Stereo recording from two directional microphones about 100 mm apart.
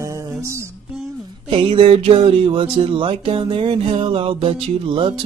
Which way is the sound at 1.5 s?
65° right (ahead or behind).